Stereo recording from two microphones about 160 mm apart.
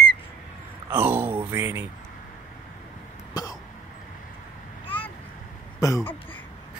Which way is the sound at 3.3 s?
25° left (ahead or behind).